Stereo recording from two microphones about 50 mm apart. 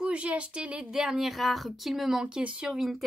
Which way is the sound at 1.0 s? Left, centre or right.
Centre.